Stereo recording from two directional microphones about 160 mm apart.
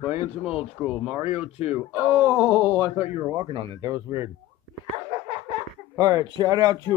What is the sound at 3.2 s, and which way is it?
Speech, 25° right (ahead or behind).